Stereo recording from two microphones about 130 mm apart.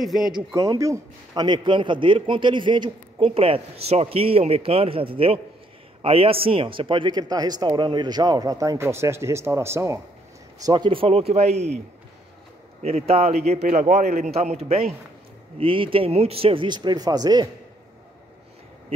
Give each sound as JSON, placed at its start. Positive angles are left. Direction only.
{"t": 0.0, "sound": "speech", "side_deg": 0}
{"t": 0.6, "sound": "speech", "side_deg": -25}
{"t": 3.3, "sound": "a man's voice", "side_deg": -45}
{"t": 10.6, "sound": "a man's voice", "side_deg": -35}
{"t": 12.8, "sound": "a man's voice", "side_deg": -50}